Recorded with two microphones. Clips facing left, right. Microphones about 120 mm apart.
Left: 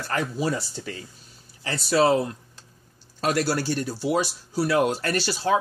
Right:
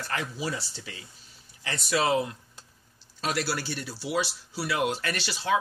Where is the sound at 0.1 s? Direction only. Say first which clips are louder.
Left 7 dB; 40° left (ahead or behind).